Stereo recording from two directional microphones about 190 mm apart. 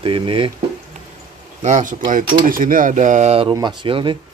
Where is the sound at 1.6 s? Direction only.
45° right (ahead or behind).